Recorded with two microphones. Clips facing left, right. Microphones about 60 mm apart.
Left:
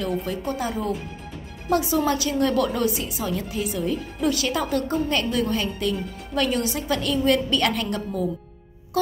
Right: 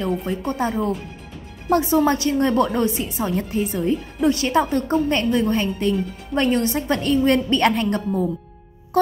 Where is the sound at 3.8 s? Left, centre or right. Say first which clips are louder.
Right 5 dB; right.